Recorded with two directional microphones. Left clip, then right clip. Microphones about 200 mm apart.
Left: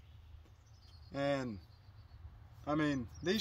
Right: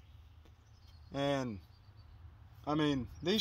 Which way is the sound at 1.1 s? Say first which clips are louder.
Right 1 dB; 20° right (ahead or behind).